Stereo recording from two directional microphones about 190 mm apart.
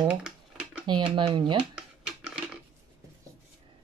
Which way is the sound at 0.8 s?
25° right (ahead or behind).